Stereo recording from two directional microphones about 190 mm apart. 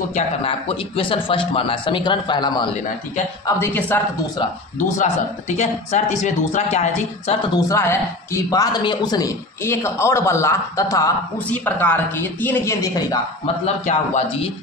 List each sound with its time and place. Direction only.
0.1 s a man's voice: 30° left (ahead or behind)
3.4 s speech: 10° left (ahead or behind)
4.7 s speech: 40° left (ahead or behind)
7.6 s speech: 15° left (ahead or behind)
13.8 s speech: 35° left (ahead or behind)